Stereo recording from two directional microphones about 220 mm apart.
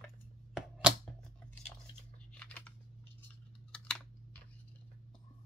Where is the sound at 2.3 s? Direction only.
5° left (ahead or behind).